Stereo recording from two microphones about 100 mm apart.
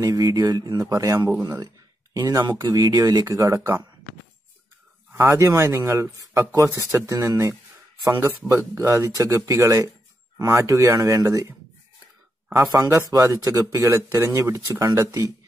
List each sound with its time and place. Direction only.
0.0 s speech: 40° right (ahead or behind)
2.6 s speech: 45° right (ahead or behind)
3.3 s speech: 30° right (ahead or behind)
5.1 s speech: 25° right (ahead or behind)
12.5 s speech: 30° right (ahead or behind)